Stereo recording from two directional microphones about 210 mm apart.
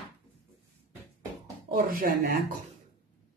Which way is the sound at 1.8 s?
45° right (ahead or behind).